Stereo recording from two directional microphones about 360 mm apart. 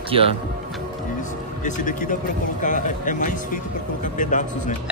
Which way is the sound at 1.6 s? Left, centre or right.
Left.